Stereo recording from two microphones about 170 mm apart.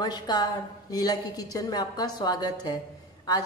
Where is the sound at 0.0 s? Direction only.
25° left (ahead or behind).